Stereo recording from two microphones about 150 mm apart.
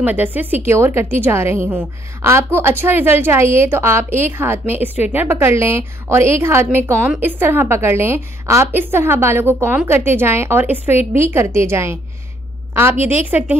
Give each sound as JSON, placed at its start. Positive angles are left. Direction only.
{"t": 0.0, "sound": "a woman's voice", "side_deg": -10}
{"t": 13.0, "sound": "a woman's voice", "side_deg": -10}